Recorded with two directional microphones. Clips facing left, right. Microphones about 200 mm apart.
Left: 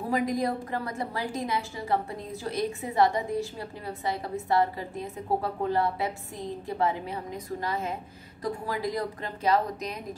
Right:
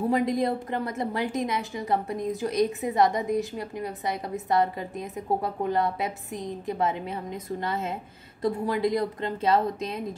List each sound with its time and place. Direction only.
0.1 s a woman's voice: 25° right (ahead or behind)